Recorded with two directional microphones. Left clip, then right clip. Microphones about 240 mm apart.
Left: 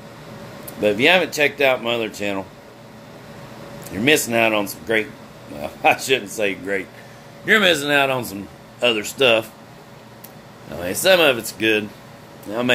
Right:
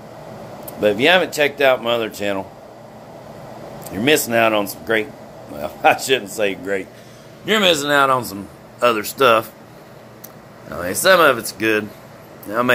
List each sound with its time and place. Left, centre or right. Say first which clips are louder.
0.7 s speech: right 1 dB; centre
3.9 s speech: right 1 dB; centre
10.8 s speech: right 2 dB; centre